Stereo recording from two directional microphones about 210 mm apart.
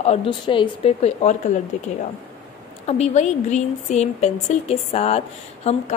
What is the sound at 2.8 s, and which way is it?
A woman's voice, 30° left (ahead or behind).